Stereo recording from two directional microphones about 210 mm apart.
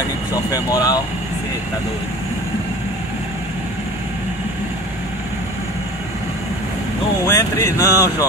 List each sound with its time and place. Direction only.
0.5 s speech: 15° left (ahead or behind)
7.2 s speech: 15° left (ahead or behind)